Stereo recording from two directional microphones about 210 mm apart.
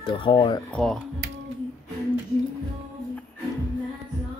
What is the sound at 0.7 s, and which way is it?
Speech, centre (ahead or behind).